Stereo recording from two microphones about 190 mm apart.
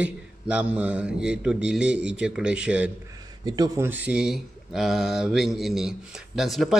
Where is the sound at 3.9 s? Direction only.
10° right (ahead or behind).